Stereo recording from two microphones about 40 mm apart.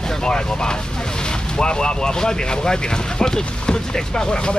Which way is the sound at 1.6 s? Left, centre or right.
Left.